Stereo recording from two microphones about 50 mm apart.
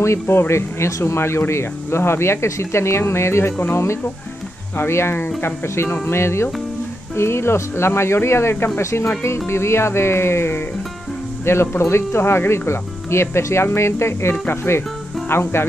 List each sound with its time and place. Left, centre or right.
0.0 s speech: left
4.7 s speech: left